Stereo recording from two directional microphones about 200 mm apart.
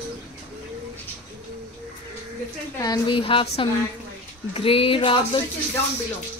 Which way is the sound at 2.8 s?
20° left (ahead or behind).